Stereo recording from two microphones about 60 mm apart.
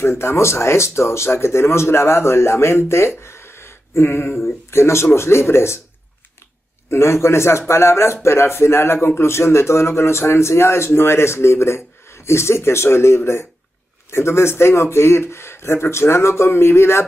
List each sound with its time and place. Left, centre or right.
0.2 s speech: left
3.2 s a sound: left
4.6 s speech: left
6.9 s speech: left